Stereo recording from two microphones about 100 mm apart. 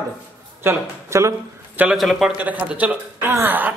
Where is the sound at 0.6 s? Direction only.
30° right (ahead or behind).